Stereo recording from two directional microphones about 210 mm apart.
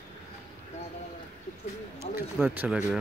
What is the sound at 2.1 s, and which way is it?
Speech, 10° right (ahead or behind).